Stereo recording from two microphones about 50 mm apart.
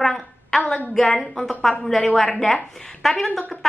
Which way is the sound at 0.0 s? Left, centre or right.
Centre.